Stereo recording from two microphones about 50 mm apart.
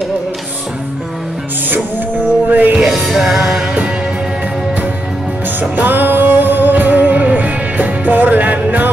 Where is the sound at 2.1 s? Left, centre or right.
Right.